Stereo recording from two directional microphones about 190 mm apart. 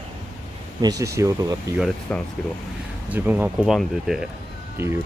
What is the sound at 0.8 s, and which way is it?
Speech, 20° right (ahead or behind).